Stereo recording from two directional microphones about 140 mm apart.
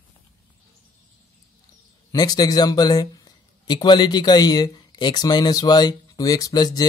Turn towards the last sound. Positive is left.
turn(degrees=30)  # may be behind; listen again after turning